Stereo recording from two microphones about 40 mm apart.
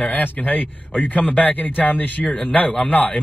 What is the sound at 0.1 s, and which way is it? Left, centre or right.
A man's voice, left.